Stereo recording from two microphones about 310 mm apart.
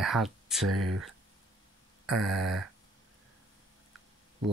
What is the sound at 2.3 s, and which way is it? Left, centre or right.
Speech, centre.